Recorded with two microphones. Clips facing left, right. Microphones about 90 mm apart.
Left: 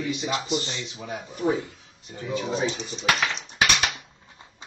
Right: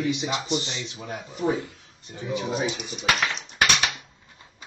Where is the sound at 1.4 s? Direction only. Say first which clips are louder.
Left 1 dB; 20° left (ahead or behind).